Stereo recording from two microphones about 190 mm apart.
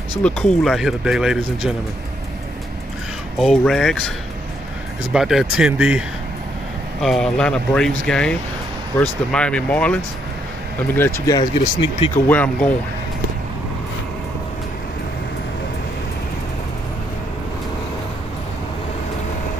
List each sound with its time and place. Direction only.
0.2 s speech: centre (ahead or behind)
3.3 s speech: centre (ahead or behind)
5.1 s speech: centre (ahead or behind)
11.1 s speech: 20° left (ahead or behind)
12.3 s speech: 10° left (ahead or behind)